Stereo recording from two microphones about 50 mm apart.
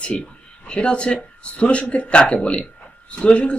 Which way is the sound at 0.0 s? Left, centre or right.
Centre.